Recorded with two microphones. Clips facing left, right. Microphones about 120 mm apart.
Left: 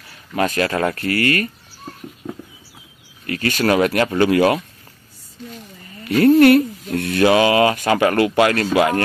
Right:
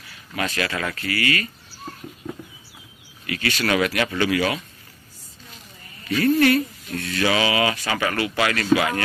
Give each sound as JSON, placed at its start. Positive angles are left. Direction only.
{"t": 0.4, "sound": "speech", "side_deg": 40}
{"t": 3.3, "sound": "speech", "side_deg": 45}
{"t": 6.0, "sound": "speech", "side_deg": 60}